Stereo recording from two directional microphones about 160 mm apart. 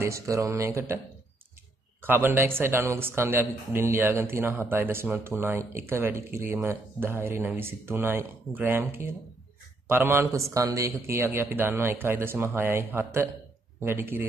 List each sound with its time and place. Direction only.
0.0 s speech: 20° right (ahead or behind)
2.0 s speech: 15° right (ahead or behind)